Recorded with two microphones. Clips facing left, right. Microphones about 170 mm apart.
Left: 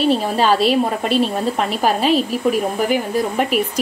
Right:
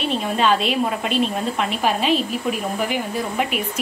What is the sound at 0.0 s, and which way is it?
A woman's voice, 35° left (ahead or behind).